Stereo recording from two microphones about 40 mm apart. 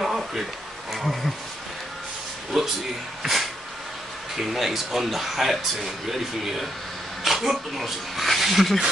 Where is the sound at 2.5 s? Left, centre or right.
Centre.